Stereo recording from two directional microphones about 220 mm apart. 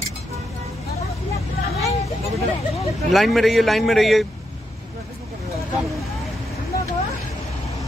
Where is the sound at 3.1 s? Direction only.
Centre (ahead or behind).